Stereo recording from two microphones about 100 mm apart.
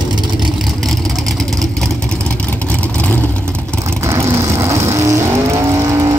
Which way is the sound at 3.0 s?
15° left (ahead or behind).